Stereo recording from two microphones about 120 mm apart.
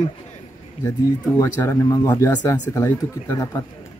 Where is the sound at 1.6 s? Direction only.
25° left (ahead or behind).